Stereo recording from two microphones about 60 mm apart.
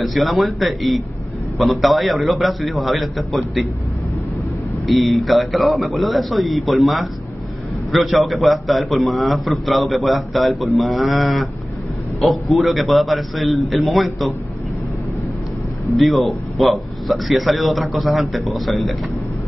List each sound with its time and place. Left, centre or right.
0.0 s a man's voice: centre
4.8 s a man's voice: centre
16.0 s a man's voice: centre